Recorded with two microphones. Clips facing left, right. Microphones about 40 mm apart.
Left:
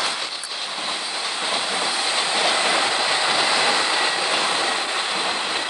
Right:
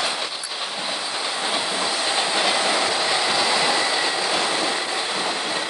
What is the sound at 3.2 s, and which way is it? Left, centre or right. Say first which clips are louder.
Train: left 1 dB; left.